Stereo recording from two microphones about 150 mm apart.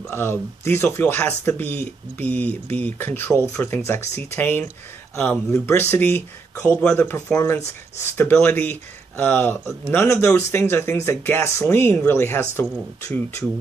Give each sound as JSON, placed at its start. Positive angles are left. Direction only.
{"t": 0.1, "sound": "speech", "side_deg": 15}